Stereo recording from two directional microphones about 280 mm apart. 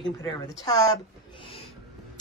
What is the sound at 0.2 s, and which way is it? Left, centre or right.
Speech, centre.